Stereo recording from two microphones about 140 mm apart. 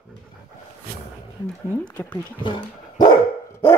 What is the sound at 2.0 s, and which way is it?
Speech, 15° left (ahead or behind).